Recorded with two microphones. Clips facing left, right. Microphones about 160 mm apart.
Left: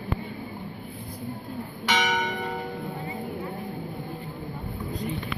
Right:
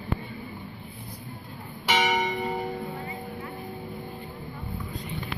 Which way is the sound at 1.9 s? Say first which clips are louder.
Right 1 dB; 5° right (ahead or behind).